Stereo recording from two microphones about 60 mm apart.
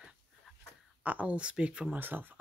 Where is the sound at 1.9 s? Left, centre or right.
Right.